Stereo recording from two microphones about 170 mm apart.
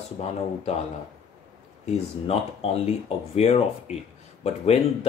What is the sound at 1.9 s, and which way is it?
Speech, 35° left (ahead or behind).